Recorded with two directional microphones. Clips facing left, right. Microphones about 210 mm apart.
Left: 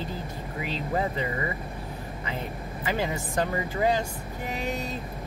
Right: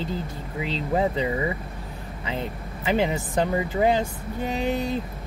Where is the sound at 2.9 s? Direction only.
20° right (ahead or behind).